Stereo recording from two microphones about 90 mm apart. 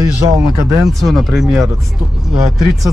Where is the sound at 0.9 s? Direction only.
Centre (ahead or behind).